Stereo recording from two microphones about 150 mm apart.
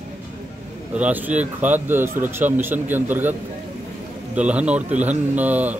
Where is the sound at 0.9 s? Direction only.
10° right (ahead or behind).